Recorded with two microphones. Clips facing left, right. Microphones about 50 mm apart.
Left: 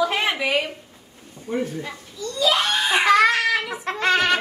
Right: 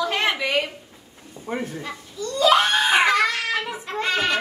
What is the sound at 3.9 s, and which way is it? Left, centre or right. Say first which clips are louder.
Music: left 5 dB; left.